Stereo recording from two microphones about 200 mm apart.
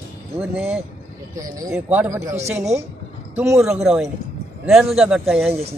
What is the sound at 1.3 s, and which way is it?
Speech, 15° right (ahead or behind).